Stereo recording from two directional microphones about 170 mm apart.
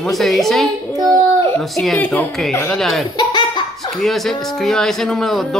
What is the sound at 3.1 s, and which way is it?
Belly laugh, 25° left (ahead or behind).